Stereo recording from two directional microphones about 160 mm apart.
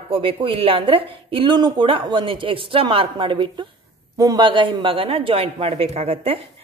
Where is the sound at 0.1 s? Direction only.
35° right (ahead or behind).